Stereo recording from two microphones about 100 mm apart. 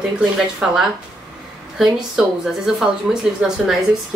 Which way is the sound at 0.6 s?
5° right (ahead or behind).